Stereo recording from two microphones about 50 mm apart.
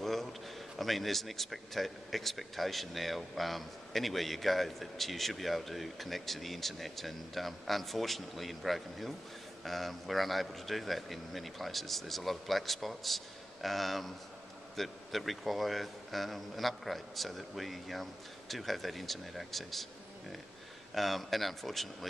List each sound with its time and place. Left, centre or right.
0.0 s a man's voice: centre
20.9 s a man's voice: centre